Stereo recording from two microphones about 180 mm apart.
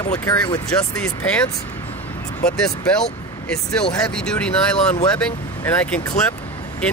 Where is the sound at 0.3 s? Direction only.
20° left (ahead or behind).